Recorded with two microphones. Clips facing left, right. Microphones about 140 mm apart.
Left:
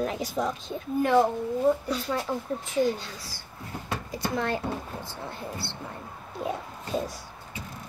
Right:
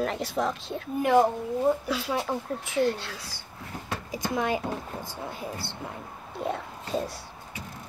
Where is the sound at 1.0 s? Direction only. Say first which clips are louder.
Right 1 dB; 15° right (ahead or behind).